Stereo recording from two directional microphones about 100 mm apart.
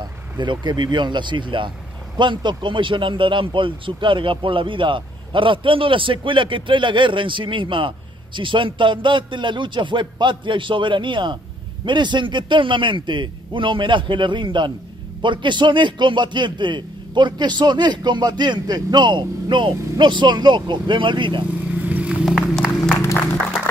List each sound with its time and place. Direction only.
0.0 s a man's voice: 50° right (ahead or behind)
21.8 s vehicle: 15° right (ahead or behind)
22.2 s music: centre (ahead or behind)